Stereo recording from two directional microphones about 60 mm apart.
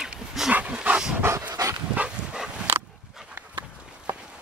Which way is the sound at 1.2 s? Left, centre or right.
Right.